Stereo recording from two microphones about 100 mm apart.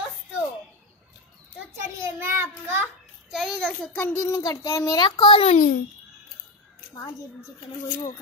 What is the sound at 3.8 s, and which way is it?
A child's voice, 20° left (ahead or behind).